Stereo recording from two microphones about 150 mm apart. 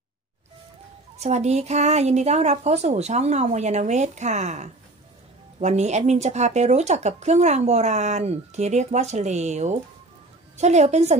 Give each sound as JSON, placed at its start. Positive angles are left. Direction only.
{"t": 1.1, "sound": "speech", "side_deg": -50}